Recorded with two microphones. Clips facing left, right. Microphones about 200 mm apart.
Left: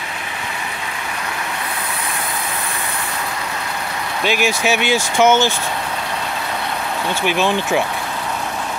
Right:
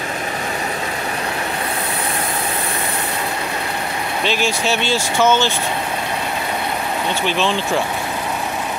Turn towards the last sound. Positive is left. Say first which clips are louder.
# left 2 dB
turn(degrees=15)  # may be behind; listen again after turning